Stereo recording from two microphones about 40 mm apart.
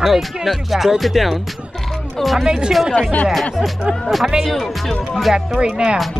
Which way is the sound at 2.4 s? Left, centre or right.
Centre.